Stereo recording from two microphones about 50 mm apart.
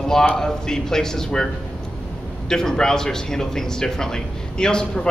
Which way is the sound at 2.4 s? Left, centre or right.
Centre.